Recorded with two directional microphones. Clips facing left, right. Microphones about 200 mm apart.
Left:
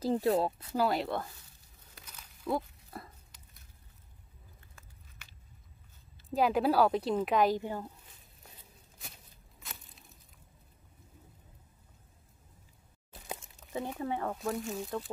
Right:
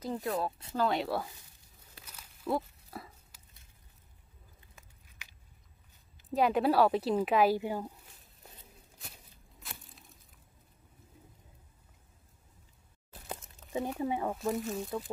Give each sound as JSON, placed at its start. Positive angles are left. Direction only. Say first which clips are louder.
{"t": 0.0, "sound": "speech", "louder": "left 5 dB", "side_deg": 35}
{"t": 0.7, "sound": "speech", "louder": "even", "side_deg": 5}
{"t": 2.0, "sound": "a sound", "louder": "even", "side_deg": -5}
{"t": 4.6, "sound": "biting", "louder": "left 1 dB", "side_deg": -10}
{"t": 6.3, "sound": "speech", "louder": "even", "side_deg": 0}
{"t": 9.6, "sound": "crushing", "louder": "right 1 dB", "side_deg": 0}
{"t": 13.8, "sound": "speech", "louder": "right 2 dB", "side_deg": -10}